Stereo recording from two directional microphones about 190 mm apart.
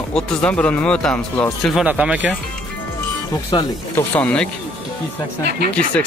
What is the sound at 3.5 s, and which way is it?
Speech, 25° left (ahead or behind).